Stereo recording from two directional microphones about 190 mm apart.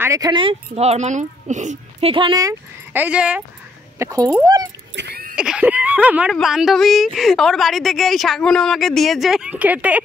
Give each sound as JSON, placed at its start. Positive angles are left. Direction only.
{"t": 0.0, "sound": "speech", "side_deg": -15}
{"t": 4.3, "sound": "speech", "side_deg": -20}
{"t": 4.9, "sound": "a sound", "side_deg": -60}
{"t": 5.3, "sound": "a woman's voice", "side_deg": -5}